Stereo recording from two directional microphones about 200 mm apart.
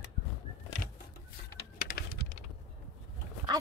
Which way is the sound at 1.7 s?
45° left (ahead or behind).